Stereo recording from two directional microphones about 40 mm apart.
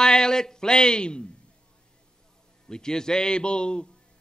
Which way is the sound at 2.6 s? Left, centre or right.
Centre.